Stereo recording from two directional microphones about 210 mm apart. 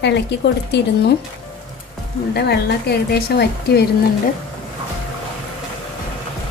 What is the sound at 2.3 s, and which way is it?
A woman's voice, 50° left (ahead or behind).